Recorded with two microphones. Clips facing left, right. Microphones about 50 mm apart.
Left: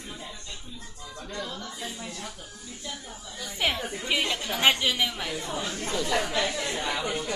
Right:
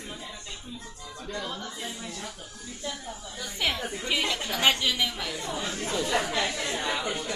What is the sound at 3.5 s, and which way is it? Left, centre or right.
Chatter, centre.